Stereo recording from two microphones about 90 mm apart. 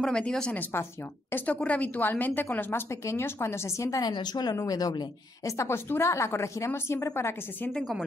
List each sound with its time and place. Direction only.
0.0 s a woman's voice: 10° left (ahead or behind); by 4.0 s 35° left (ahead or behind)
4.0 s a woman's voice: 50° left (ahead or behind); by 7.3 s 30° left (ahead or behind)